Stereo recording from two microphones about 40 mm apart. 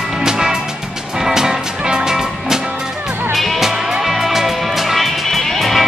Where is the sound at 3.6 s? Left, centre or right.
Centre.